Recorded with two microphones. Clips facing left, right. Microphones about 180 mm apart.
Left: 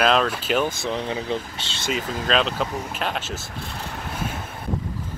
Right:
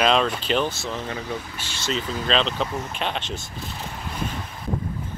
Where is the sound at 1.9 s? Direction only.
5° left (ahead or behind).